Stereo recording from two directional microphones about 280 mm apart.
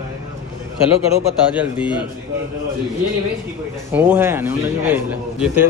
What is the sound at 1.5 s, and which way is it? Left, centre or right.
Speech, centre.